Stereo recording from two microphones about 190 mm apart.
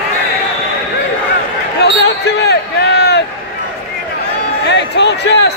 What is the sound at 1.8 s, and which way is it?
Basketball bounce, 65° left (ahead or behind).